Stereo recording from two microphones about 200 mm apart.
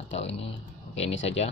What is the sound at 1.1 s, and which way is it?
Speech, 70° left (ahead or behind).